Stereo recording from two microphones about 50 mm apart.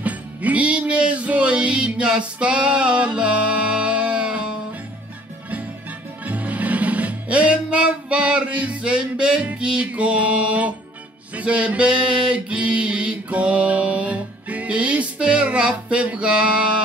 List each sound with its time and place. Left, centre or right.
0.0 s music: right
6.2 s music: right
11.3 s a sound: right